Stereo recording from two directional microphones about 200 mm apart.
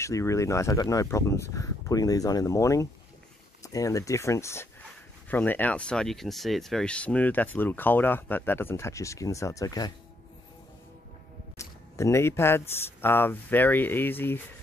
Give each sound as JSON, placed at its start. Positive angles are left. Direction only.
{"t": 0.0, "sound": "speech", "side_deg": 15}
{"t": 11.5, "sound": "speech", "side_deg": 15}